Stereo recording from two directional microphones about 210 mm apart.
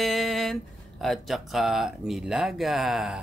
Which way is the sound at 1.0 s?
Centre (ahead or behind).